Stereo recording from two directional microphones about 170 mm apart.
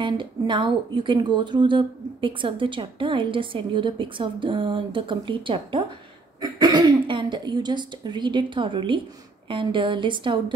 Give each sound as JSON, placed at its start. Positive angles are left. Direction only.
{"t": 0.0, "sound": "speech", "side_deg": -30}